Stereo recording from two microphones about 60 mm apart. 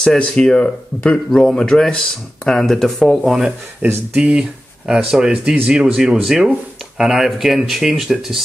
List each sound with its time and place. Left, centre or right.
0.0 s speech: centre
3.8 s speech: right
4.2 s speech: centre